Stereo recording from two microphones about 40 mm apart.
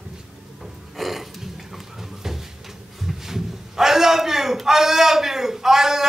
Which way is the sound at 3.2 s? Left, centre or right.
Centre.